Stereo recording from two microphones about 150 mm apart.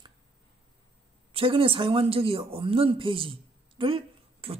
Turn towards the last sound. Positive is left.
turn(degrees=-40)  # may be behind; listen again after turning